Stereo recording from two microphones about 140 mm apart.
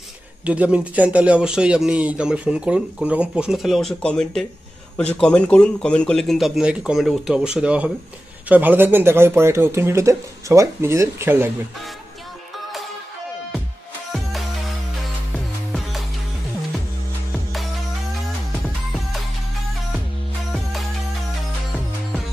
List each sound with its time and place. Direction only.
0.5 s speech: 10° right (ahead or behind)
15.3 s music: centre (ahead or behind)